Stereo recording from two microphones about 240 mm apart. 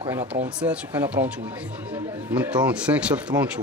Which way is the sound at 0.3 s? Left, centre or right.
Centre.